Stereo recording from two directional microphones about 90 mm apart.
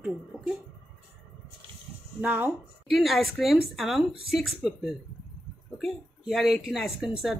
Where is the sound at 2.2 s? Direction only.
20° right (ahead or behind).